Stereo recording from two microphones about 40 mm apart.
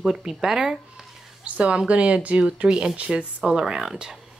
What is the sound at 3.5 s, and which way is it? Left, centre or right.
Speech, centre.